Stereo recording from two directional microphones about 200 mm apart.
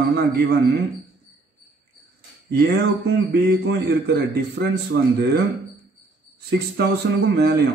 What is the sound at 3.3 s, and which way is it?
A man's voice, 60° right (ahead or behind).